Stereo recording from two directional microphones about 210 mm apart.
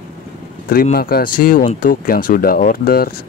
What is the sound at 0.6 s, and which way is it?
Speech, 45° left (ahead or behind).